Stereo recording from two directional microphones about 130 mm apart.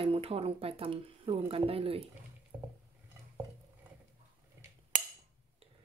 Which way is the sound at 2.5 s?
15° right (ahead or behind).